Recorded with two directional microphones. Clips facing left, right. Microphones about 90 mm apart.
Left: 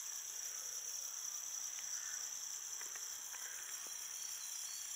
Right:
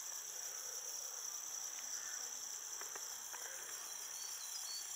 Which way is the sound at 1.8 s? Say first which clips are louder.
Even; 10° right (ahead or behind).